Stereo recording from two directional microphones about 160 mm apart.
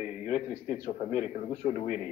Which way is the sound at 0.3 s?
50° left (ahead or behind).